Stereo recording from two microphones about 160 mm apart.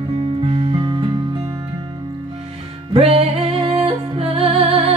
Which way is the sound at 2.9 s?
40° right (ahead or behind).